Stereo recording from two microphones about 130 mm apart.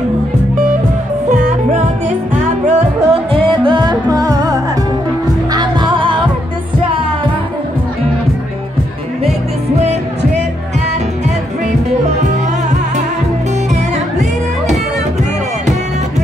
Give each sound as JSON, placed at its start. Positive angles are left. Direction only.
{"t": 1.3, "sound": "music", "side_deg": -70}
{"t": 2.6, "sound": "music", "side_deg": -45}